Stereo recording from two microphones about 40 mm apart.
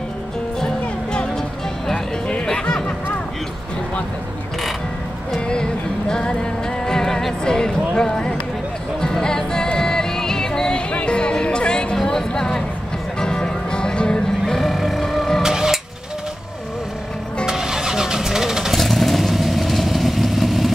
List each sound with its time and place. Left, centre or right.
0.6 s music: centre
5.5 s music: centre
10.9 s music: left
14.7 s music: centre
15.4 s printer: centre
17.5 s vehicle: centre
18.7 s vehicle: centre